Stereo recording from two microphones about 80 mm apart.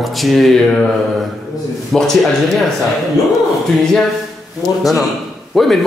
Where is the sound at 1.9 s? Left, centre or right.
Centre.